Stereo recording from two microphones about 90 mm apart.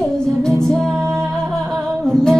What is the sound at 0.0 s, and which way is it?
Music, 5° left (ahead or behind).